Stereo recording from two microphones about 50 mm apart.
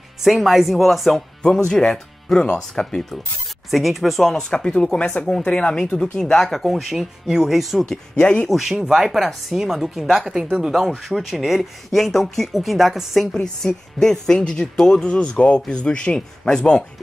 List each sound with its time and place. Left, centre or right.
0.2 s speech: centre
1.7 s speech: centre
3.7 s speech: centre
4.4 s speech: centre
6.7 s speech: centre
8.2 s speech: left
8.5 s speech: centre